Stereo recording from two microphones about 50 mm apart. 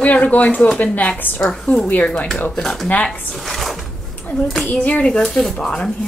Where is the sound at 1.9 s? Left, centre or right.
Left.